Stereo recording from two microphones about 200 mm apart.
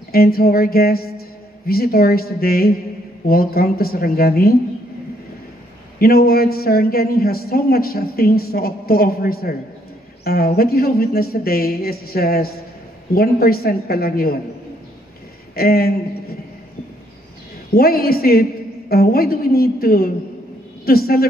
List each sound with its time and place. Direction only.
0.1 s a man's voice: 50° left (ahead or behind)
5.9 s a man's voice: 50° left (ahead or behind)
15.5 s a man's voice: 50° left (ahead or behind)
17.7 s a man's voice: 50° left (ahead or behind)